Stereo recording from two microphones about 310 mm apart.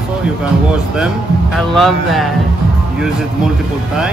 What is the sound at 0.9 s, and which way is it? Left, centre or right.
Speech, centre.